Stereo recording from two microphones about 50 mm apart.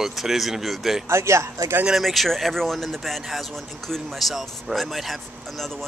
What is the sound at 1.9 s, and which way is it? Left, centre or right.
Speech, centre.